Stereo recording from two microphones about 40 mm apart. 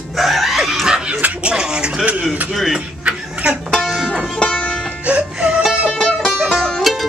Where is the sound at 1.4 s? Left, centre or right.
Right.